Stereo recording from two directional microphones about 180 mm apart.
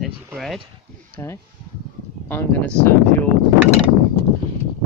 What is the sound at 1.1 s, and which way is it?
Speech, 15° left (ahead or behind).